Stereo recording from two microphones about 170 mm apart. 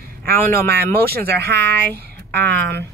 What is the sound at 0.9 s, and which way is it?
Speech, 65° right (ahead or behind).